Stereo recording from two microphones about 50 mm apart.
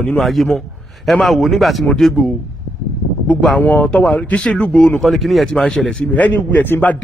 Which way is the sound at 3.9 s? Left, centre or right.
Left.